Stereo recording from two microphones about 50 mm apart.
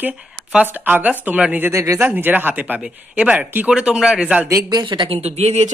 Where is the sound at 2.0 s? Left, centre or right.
Right.